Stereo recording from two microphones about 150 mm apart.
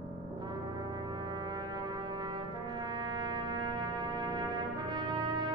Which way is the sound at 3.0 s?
30° right (ahead or behind).